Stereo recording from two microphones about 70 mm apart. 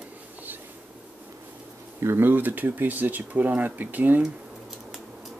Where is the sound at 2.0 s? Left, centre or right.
Right.